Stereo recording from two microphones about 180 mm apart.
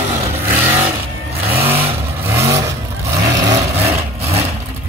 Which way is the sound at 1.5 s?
10° right (ahead or behind).